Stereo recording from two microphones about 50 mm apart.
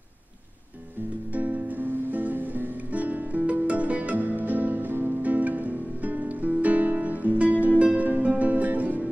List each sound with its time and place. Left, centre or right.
1.3 s music: right